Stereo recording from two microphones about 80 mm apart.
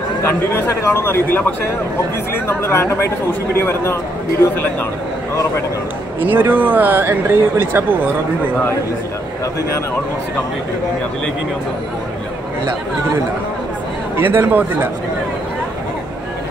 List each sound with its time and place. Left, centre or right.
0.2 s speech: left
6.2 s speech: right
14.1 s speech: right